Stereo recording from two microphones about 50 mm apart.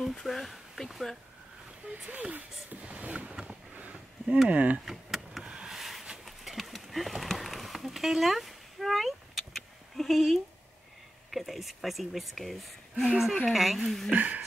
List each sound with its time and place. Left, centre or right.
0.0 s speech: centre
2.0 s speech: right
2.8 s a sound: right
4.5 s speech: right
4.8 s power windows: centre
5.4 s vehicle: centre
5.7 s a sound: centre
11.2 s speech: centre
12.9 s speech: right
13.5 s speech: centre
14.1 s speech: right